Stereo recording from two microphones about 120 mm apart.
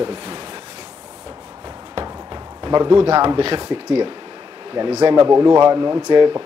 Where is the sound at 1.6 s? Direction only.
40° right (ahead or behind).